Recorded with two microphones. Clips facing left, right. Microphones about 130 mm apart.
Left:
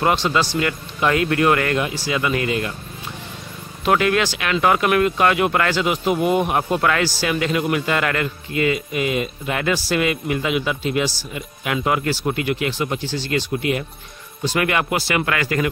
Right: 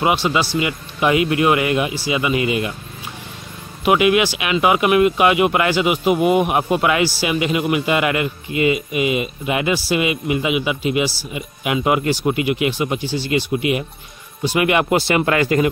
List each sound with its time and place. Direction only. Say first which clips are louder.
0.0 s speech: right 1 dB; 10° right (ahead or behind)
3.8 s speech: right 3 dB; 10° right (ahead or behind)